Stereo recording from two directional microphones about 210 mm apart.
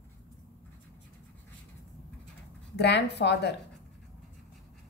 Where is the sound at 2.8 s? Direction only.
55° left (ahead or behind).